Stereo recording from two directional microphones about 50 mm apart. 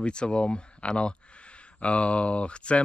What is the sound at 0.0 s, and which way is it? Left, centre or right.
Speech, centre.